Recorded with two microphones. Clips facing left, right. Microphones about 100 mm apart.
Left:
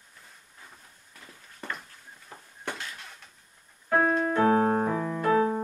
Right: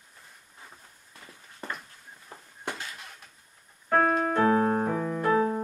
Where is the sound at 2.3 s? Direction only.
15° right (ahead or behind).